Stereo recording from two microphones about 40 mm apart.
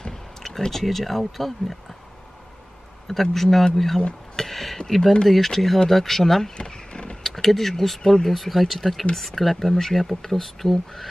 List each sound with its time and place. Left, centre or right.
0.0 s speech: centre
3.1 s speech: centre
6.5 s a sound: left
7.2 s speech: centre